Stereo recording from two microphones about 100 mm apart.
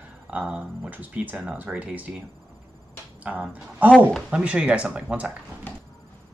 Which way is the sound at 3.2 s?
15° right (ahead or behind).